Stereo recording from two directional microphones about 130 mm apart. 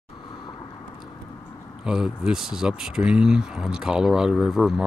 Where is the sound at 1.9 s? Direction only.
5° right (ahead or behind).